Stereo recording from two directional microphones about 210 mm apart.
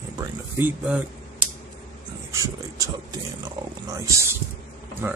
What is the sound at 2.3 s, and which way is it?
Speech, 15° right (ahead or behind).